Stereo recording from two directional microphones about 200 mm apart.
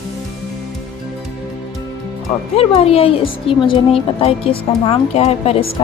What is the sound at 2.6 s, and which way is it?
A woman's voice, 30° left (ahead or behind).